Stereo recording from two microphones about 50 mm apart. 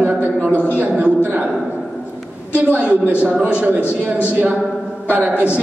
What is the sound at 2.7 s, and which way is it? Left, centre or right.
Speech, right.